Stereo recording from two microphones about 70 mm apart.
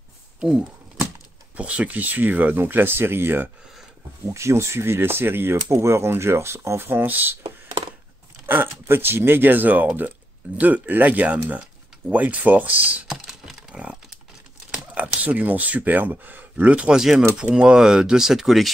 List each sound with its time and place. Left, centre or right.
0.4 s speech: centre; by 3.4 s right
4.3 s speech: right
8.5 s speech: right
13.1 s typing: centre
15.0 s speech: right; by 18.7 s centre